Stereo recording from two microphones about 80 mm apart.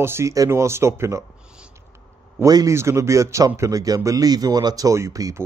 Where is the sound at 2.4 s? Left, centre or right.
Right.